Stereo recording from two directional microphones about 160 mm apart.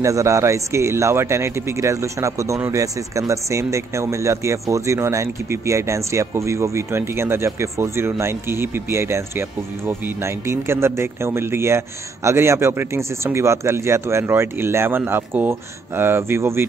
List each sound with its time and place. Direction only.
0.0 s speech: 20° right (ahead or behind)